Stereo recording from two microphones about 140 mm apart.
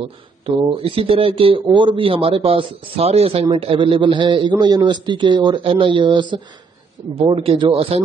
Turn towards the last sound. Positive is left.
turn(degrees=-40)  # may be behind; listen again after turning